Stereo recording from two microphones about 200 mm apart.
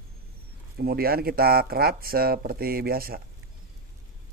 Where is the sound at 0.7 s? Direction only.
50° right (ahead or behind).